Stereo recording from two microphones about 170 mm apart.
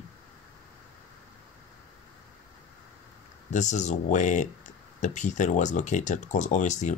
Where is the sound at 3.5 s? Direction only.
45° left (ahead or behind).